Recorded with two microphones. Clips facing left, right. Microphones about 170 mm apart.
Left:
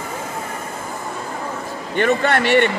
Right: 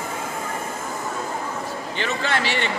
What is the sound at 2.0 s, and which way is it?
Speech, 55° left (ahead or behind).